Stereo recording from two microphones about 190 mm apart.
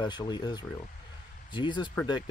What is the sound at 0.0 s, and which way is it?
Speech, 20° left (ahead or behind).